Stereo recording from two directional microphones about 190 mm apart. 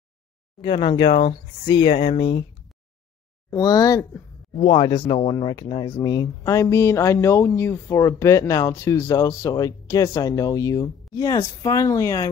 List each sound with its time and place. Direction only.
0.6 s speech: 30° left (ahead or behind)
3.4 s speech: 20° left (ahead or behind)